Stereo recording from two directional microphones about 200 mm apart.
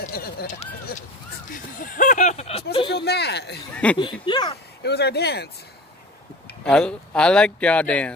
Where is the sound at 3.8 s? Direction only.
5° left (ahead or behind).